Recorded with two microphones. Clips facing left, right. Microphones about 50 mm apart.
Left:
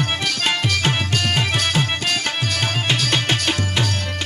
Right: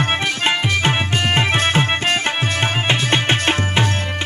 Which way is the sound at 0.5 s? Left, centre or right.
Right.